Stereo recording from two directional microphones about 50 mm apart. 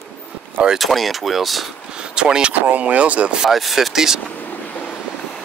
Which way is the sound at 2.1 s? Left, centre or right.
Centre.